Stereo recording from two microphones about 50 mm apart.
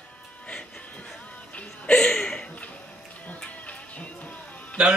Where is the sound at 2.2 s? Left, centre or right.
Left.